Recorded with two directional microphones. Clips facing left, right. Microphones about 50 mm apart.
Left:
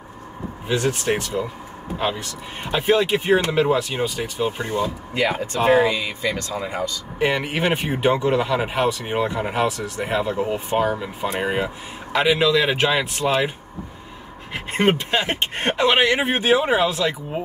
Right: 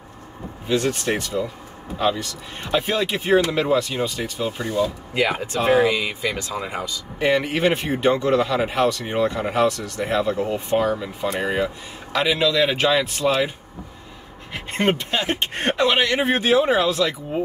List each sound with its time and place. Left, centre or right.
0.7 s speech: centre
5.1 s speech: centre
7.2 s speech: centre
14.5 s speech: centre